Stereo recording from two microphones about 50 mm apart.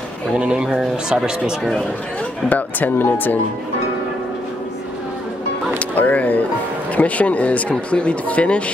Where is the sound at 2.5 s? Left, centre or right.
Left.